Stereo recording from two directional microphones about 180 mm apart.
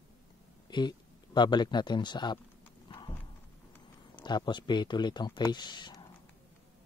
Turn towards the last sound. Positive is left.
turn(degrees=25)  # may be behind; listen again after turning